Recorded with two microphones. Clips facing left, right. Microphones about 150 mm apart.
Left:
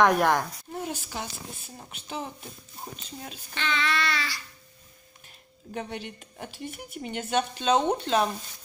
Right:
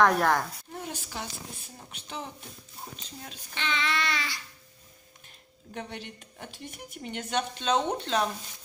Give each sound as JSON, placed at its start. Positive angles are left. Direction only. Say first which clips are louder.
{"t": 0.0, "sound": "speech", "louder": "left 2 dB", "side_deg": 15}
{"t": 1.1, "sound": "speech", "louder": "left 2 dB", "side_deg": 5}
{"t": 3.5, "sound": "a sound", "louder": "left 2 dB", "side_deg": -20}
{"t": 5.8, "sound": "speech", "louder": "left 4 dB", "side_deg": 5}